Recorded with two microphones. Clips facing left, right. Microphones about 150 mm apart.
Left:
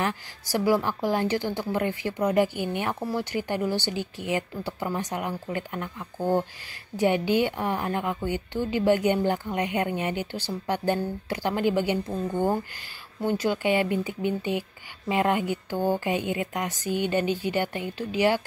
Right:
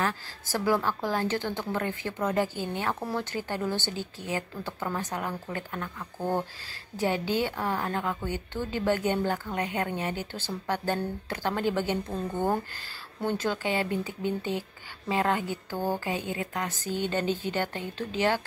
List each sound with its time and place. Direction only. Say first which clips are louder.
0.0 s a woman's voice: left 1 dB; 15° left (ahead or behind)